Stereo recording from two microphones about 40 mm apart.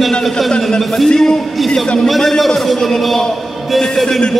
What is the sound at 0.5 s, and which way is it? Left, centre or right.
A man's voice, centre.